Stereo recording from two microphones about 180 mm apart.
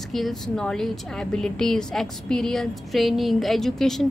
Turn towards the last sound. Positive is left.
turn(degrees=0)  # may be behind; listen again after turning